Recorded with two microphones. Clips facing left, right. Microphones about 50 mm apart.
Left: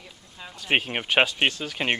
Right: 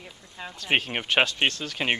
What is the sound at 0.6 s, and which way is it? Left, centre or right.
Speech, centre.